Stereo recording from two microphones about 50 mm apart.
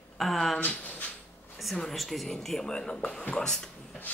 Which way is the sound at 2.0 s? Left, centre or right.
Centre.